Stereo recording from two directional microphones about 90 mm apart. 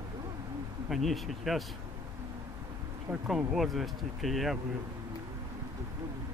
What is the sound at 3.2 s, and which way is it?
Speech, 5° right (ahead or behind).